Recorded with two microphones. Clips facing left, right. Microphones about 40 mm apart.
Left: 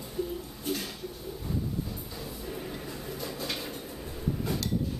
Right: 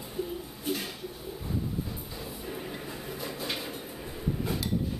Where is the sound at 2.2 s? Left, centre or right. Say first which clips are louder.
Even; centre.